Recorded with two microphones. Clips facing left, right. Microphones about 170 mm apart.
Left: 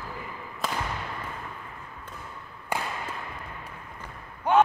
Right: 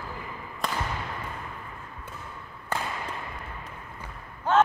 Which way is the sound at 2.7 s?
10° left (ahead or behind).